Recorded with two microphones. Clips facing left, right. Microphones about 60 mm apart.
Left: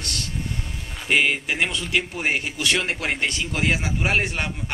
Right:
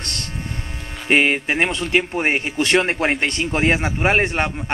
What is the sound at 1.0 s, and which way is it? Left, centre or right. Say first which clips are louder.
A man's voice: right 4 dB; right.